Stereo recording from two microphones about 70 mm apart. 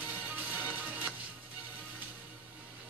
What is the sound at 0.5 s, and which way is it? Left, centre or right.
Music, right.